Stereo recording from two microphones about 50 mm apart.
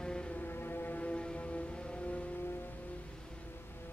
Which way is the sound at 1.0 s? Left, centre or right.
Left.